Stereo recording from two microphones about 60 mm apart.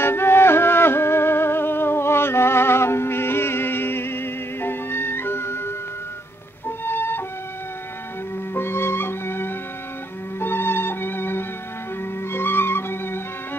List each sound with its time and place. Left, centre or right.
0.0 s music: left
6.8 s music: left
8.5 s music: left